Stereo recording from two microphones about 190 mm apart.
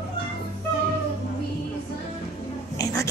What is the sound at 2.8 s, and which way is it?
Rub, 15° left (ahead or behind).